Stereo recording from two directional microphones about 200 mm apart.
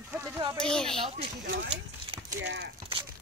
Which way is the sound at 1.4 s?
65° right (ahead or behind).